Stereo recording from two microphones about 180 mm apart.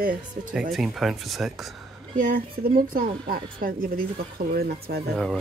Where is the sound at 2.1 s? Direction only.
50° right (ahead or behind).